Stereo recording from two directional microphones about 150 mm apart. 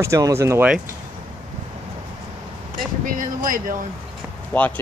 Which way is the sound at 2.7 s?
65° right (ahead or behind).